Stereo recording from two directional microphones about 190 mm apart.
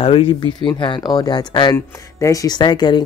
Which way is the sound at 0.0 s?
30° left (ahead or behind).